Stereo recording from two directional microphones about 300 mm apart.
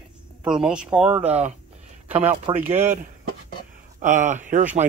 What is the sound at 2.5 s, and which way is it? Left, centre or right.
Speech, centre.